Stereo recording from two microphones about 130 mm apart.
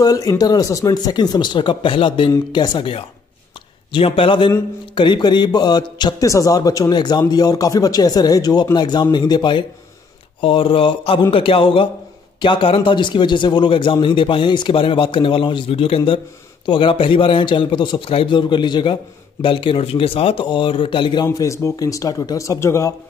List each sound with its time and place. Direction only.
0.0 s a man's voice: 30° left (ahead or behind)
21.3 s speech: 25° left (ahead or behind)